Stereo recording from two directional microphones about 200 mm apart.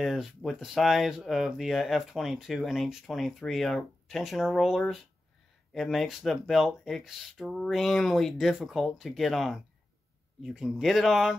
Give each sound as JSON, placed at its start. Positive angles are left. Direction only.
{"t": 0.0, "sound": "speech", "side_deg": 0}